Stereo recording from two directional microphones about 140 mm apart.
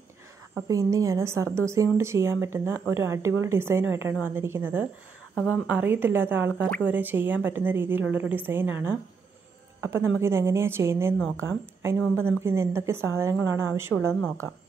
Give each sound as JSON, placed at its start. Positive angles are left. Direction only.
{"t": 0.7, "sound": "a woman's voice", "side_deg": -25}
{"t": 5.3, "sound": "a woman's voice", "side_deg": 15}
{"t": 5.7, "sound": "a woman's voice", "side_deg": -15}